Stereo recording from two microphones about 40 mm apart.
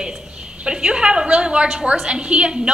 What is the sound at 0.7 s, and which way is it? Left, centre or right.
A woman's voice, right.